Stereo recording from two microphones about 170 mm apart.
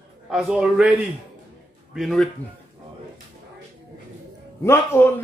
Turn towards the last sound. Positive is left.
turn(degrees=15)  # may be behind; listen again after turning